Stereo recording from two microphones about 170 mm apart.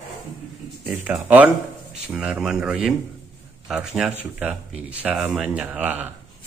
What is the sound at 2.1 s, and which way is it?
Speech, 5° right (ahead or behind).